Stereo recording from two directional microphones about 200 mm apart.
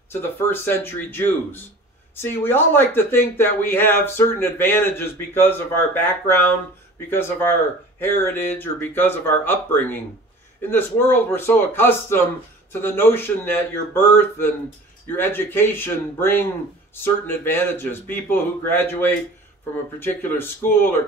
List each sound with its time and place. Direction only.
0.1 s speech: 10° left (ahead or behind)